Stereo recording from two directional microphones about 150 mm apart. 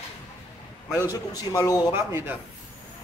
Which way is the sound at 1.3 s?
25° left (ahead or behind).